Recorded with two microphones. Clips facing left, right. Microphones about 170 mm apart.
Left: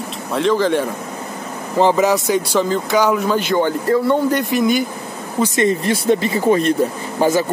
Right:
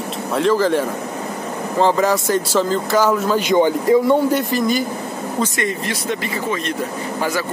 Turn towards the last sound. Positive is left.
turn(degrees=25)  # may be behind; listen again after turning